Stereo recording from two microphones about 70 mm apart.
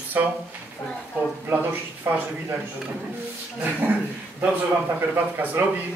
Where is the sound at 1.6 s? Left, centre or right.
Right.